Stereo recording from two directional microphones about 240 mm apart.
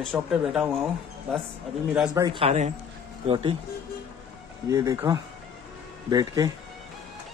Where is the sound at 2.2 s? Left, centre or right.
Right.